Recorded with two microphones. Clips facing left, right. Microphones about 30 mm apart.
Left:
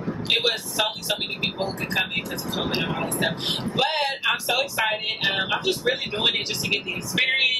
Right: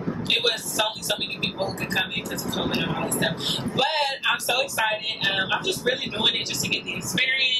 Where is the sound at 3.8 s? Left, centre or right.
Centre.